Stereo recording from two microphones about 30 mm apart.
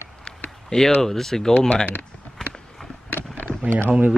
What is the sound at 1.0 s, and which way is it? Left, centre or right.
Speech, centre.